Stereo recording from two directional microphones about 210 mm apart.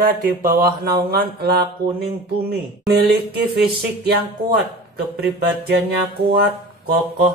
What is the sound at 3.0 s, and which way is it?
Speech, 50° right (ahead or behind).